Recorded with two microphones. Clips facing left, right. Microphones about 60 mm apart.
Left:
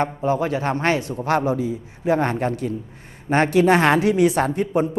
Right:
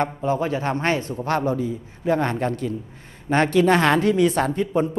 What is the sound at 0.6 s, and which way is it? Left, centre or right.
A man's voice, centre.